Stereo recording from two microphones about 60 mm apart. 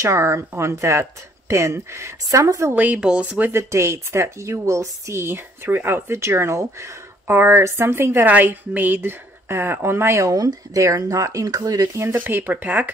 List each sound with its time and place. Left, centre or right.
0.0 s speech: right
2.2 s a woman's voice: right
2.7 s speech: right
3.0 s speech: centre
3.4 s speech: right
8.3 s speech: right
10.2 s speech: right
12.0 s speech: right